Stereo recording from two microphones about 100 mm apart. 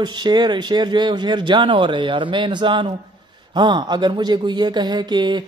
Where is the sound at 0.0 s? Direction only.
45° right (ahead or behind).